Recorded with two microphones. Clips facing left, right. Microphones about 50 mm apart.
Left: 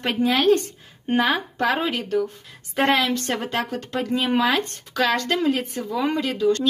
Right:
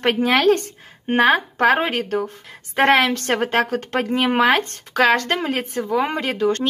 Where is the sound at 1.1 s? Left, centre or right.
Right.